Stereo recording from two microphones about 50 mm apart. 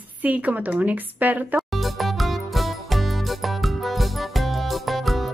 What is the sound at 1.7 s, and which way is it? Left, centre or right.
Music, centre.